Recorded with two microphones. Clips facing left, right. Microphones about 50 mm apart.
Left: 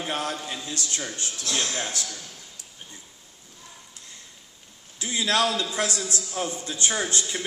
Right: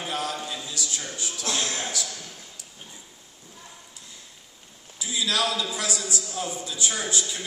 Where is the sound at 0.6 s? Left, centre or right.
Left.